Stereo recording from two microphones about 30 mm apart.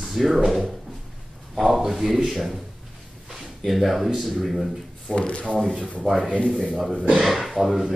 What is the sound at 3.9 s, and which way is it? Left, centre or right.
Speech, centre.